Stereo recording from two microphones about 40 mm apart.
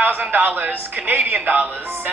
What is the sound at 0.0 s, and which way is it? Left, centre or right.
Speech, right.